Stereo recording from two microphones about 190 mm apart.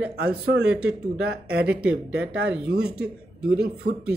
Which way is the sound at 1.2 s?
60° right (ahead or behind).